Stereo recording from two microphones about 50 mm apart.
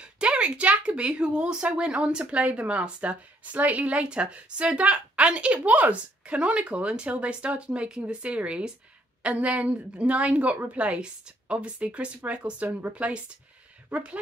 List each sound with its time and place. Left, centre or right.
0.0 s a woman's voice: centre